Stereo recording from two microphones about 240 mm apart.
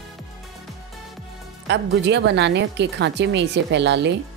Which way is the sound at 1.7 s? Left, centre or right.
Right.